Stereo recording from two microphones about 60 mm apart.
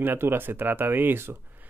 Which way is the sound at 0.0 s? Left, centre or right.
Right.